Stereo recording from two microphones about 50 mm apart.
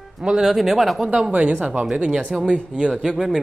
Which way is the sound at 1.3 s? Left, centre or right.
Right.